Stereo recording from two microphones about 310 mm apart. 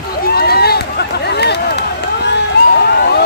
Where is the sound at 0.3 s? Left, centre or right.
Left.